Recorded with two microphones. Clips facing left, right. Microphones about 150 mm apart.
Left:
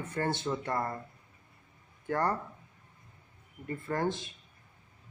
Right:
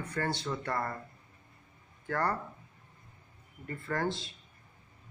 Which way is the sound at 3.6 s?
20° left (ahead or behind).